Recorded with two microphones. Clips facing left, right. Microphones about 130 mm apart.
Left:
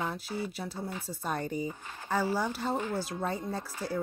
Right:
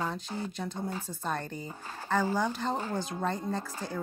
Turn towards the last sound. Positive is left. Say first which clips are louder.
# right 1 dB
turn(degrees=10)  # may be behind; listen again after turning